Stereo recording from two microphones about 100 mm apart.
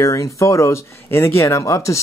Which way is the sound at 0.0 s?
30° left (ahead or behind).